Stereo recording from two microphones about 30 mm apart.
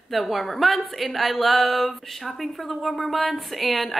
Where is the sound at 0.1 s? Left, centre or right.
Centre.